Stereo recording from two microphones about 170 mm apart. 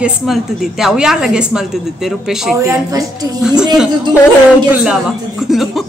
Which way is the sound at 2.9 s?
20° right (ahead or behind).